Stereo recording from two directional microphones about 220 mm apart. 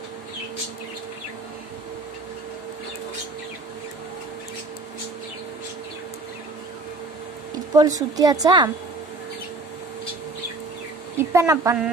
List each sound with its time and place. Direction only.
7.7 s speech: 15° right (ahead or behind)
11.1 s a woman's voice: 10° right (ahead or behind)